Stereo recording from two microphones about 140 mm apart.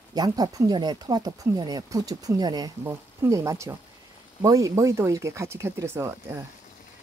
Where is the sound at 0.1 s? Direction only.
30° right (ahead or behind).